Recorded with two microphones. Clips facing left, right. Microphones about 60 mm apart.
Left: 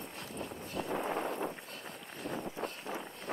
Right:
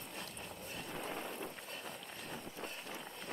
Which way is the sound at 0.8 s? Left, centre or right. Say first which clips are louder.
Left 11 dB; left.